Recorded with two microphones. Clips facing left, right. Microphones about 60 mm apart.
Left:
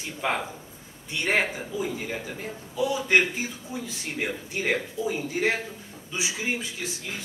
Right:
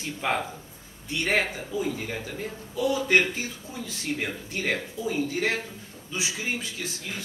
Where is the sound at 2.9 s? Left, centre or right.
Centre.